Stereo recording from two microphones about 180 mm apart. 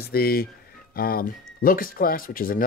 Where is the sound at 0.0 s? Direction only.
55° left (ahead or behind).